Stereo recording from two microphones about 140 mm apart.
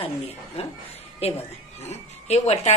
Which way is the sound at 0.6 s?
45° left (ahead or behind).